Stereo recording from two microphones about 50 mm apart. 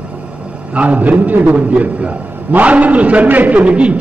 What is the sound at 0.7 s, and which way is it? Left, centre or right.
Speech, right.